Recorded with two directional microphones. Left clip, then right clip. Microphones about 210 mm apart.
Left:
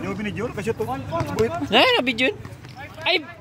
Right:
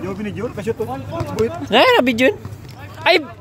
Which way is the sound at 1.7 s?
25° right (ahead or behind).